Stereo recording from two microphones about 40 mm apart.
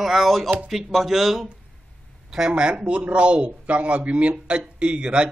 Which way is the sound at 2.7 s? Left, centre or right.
Right.